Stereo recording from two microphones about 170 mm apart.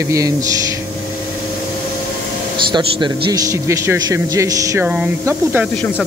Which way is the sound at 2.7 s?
25° right (ahead or behind).